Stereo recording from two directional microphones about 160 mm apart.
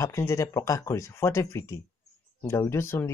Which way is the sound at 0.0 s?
20° left (ahead or behind).